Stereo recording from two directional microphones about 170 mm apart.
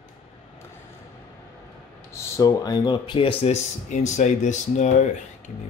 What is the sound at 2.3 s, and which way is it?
Speech, 20° left (ahead or behind).